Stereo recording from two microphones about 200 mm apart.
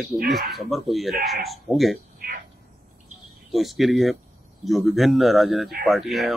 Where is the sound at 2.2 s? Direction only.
45° right (ahead or behind).